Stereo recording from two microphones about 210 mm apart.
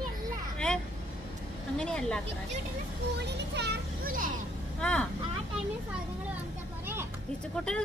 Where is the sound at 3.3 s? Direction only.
50° right (ahead or behind).